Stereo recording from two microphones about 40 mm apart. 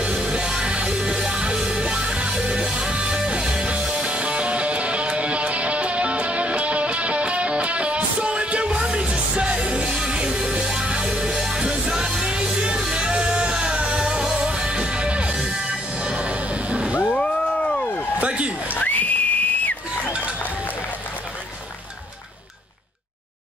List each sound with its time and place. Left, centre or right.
0.0 s music: right
17.1 s a sound: left
18.8 s whistle: left